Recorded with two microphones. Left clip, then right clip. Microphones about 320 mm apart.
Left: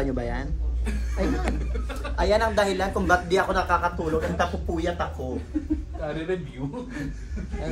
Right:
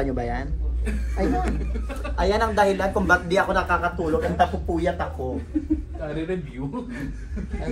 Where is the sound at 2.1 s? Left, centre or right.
Centre.